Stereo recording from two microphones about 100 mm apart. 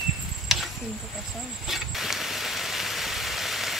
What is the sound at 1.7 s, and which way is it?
Vehicle, centre (ahead or behind).